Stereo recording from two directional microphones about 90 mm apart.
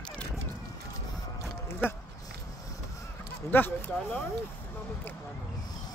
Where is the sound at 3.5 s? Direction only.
20° left (ahead or behind).